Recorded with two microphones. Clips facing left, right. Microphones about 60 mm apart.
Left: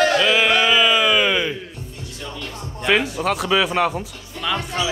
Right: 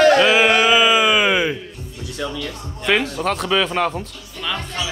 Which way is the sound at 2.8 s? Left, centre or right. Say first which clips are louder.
Even; centre.